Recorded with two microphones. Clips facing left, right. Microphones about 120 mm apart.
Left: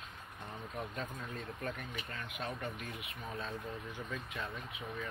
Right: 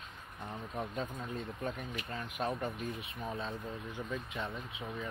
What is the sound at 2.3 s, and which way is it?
Speech, 40° right (ahead or behind).